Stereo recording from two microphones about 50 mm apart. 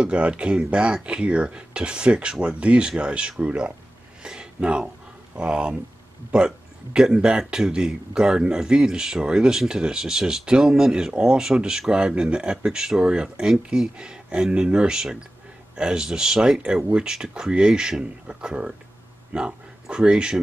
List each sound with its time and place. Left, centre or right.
0.0 s speech: right
4.2 s a sound: centre
5.4 s speech: centre